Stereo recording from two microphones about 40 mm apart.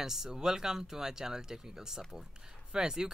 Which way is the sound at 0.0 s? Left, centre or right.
Centre.